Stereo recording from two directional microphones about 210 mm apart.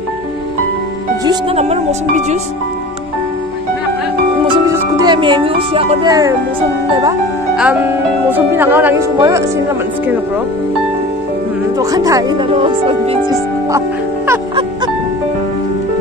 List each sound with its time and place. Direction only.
1.2 s music: 20° right (ahead or behind)
1.6 s speech: 30° right (ahead or behind)
4.5 s speech: 20° right (ahead or behind)
7.5 s music: 5° right (ahead or behind)
8.3 s speech: 10° right (ahead or behind)
11.8 s speech: 15° right (ahead or behind)
13.3 s speech: 15° right (ahead or behind)